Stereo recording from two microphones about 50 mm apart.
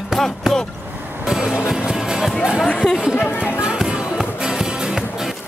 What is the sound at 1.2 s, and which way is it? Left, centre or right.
Music, centre.